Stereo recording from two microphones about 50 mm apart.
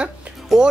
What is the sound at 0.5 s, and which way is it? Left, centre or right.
Speech, centre.